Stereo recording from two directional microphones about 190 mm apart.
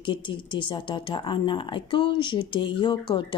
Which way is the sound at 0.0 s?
25° left (ahead or behind).